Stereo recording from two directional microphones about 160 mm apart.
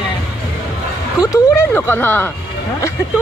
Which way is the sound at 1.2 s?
20° left (ahead or behind).